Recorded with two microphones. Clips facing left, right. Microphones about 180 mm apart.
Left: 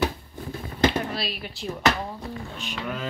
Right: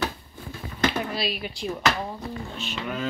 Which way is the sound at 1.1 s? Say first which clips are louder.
Right 3 dB; centre (ahead or behind).